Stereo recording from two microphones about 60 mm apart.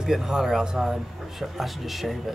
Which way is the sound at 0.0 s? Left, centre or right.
Centre.